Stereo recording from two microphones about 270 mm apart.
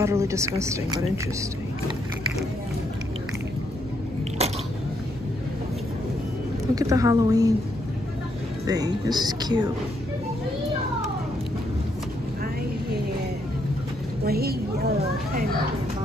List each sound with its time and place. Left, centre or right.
0.0 s a woman's voice: centre
4.4 s a sound: right
6.7 s a woman's voice: centre
8.6 s a woman's voice: centre
14.2 s a sound: right
15.0 s children playing: right